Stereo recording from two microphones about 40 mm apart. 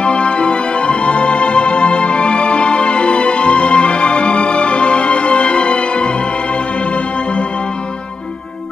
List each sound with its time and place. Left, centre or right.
0.0 s music: left